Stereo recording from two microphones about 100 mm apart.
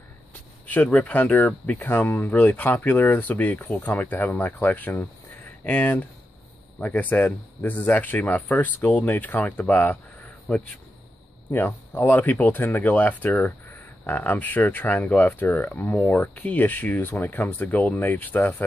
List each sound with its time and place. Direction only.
0.7 s speech: 15° left (ahead or behind)